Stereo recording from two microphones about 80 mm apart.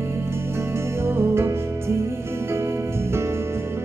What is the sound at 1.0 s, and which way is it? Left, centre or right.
Music, right.